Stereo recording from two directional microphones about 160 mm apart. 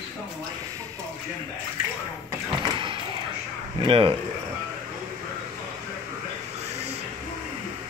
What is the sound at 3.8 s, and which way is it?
Speech, 35° right (ahead or behind).